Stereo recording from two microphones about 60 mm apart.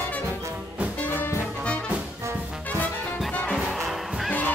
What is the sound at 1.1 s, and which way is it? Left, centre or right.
Music, left.